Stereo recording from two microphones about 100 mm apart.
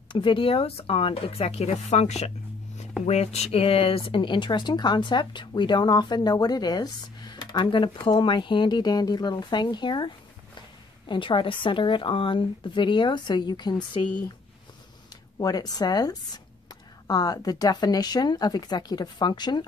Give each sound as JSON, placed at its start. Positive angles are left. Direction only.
{"t": 0.1, "sound": "speech", "side_deg": 55}
{"t": 15.3, "sound": "speech", "side_deg": 40}